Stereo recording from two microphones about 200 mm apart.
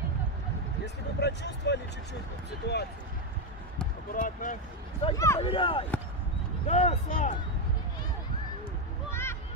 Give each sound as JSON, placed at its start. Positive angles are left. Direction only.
{"t": 0.8, "sound": "speech", "side_deg": 55}
{"t": 4.1, "sound": "speech", "side_deg": 40}
{"t": 5.1, "sound": "a man's voice", "side_deg": 15}
{"t": 5.4, "sound": "speech", "side_deg": 25}
{"t": 9.1, "sound": "a sound", "side_deg": 10}